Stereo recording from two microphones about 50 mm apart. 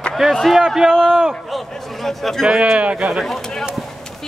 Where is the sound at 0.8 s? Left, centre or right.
Centre.